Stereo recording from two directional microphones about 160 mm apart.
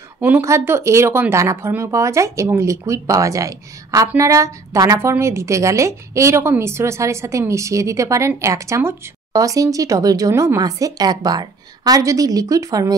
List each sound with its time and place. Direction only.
0.2 s a woman's voice: 15° right (ahead or behind)